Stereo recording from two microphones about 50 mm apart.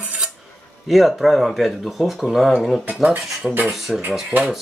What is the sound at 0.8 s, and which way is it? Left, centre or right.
Speech, centre.